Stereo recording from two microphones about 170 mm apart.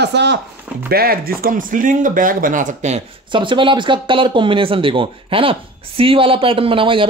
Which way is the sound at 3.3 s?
30° right (ahead or behind).